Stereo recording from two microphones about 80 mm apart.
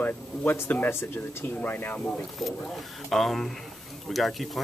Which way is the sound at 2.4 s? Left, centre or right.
Centre.